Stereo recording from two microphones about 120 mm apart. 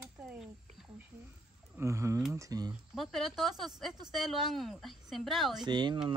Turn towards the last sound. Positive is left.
turn(degrees=-40)  # may be behind; listen again after turning